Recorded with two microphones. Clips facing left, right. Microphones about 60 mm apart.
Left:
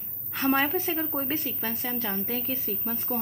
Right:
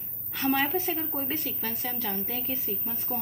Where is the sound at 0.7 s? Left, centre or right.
Left.